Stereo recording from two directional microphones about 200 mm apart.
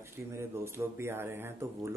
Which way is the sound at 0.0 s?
15° right (ahead or behind).